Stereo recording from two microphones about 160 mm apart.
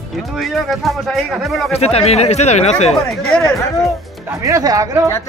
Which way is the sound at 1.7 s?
40° left (ahead or behind).